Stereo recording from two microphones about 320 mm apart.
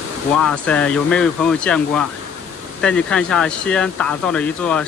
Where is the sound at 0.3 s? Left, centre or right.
Centre.